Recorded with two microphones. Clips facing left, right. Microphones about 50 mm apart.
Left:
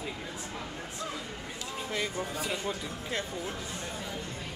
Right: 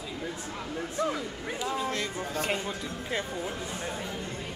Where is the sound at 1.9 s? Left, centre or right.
Centre.